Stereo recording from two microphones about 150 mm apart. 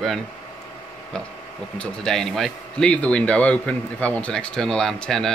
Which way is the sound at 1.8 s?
5° left (ahead or behind).